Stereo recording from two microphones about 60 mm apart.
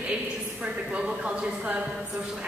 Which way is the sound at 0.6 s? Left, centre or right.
Centre.